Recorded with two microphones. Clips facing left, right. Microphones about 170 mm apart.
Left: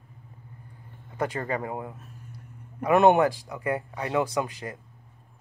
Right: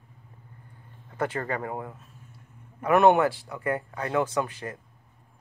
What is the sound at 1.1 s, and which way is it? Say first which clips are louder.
Speech: even; 15° left (ahead or behind).